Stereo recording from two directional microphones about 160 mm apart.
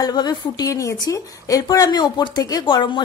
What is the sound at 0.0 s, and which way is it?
A woman's voice, 25° left (ahead or behind).